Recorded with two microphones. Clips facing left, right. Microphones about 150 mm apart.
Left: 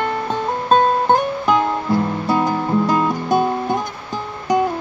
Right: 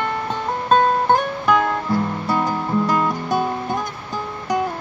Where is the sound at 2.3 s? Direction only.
20° left (ahead or behind).